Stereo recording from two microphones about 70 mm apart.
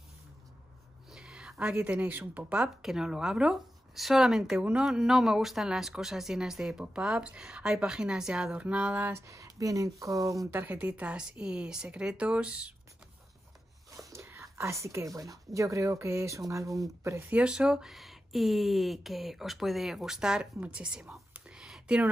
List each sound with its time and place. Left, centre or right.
1.1 s a woman's voice: centre
2.8 s speech: centre
9.1 s speech: right
10.5 s speech: right
13.9 s speech: right
17.3 s speech: centre
20.6 s whispering: centre